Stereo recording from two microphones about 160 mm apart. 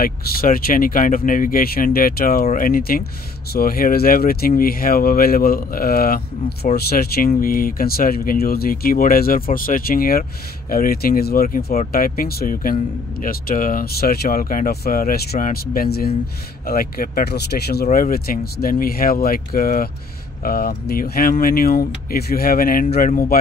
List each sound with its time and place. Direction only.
0.0 s speech: 65° left (ahead or behind)
7.2 s speech: 60° left (ahead or behind)
11.9 s speech: 70° left (ahead or behind); by 17.8 s 85° left
17.9 s speech: 65° left (ahead or behind)